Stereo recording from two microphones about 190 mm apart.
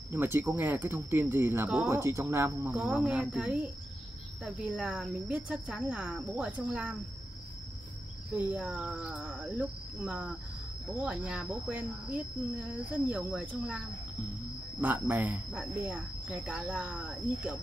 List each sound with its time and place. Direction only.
0.1 s speech: 10° right (ahead or behind)
2.7 s speech: 5° right (ahead or behind)
8.4 s speech: 5° right (ahead or behind)